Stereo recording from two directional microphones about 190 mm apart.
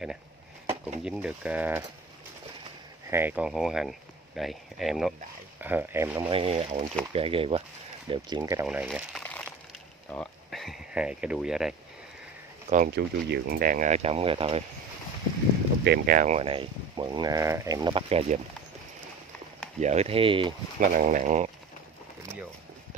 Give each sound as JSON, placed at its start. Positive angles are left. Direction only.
{"t": 1.0, "sound": "speech", "side_deg": -5}
{"t": 3.1, "sound": "speech", "side_deg": -10}
{"t": 6.3, "sound": "speech", "side_deg": -30}
{"t": 8.6, "sound": "speech", "side_deg": -5}
{"t": 12.6, "sound": "speech", "side_deg": -45}
{"t": 15.8, "sound": "speech", "side_deg": -55}
{"t": 19.8, "sound": "speech", "side_deg": -35}
{"t": 20.8, "sound": "speech", "side_deg": -45}